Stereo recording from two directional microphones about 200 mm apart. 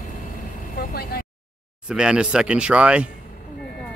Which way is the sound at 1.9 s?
5° right (ahead or behind).